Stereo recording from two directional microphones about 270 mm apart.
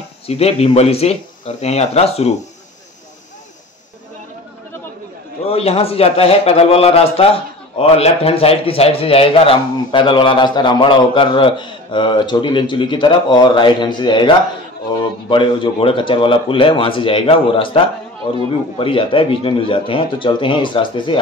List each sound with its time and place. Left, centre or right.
0.3 s a man's voice: left
5.5 s a man's voice: left